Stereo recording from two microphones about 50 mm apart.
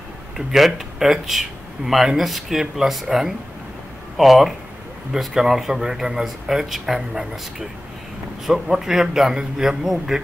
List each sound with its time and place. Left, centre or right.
0.5 s a man's voice: centre